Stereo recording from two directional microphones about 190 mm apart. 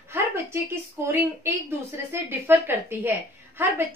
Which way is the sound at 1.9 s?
10° right (ahead or behind).